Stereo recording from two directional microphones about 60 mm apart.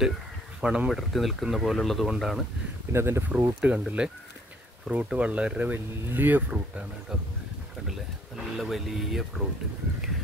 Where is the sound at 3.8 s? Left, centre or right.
Centre.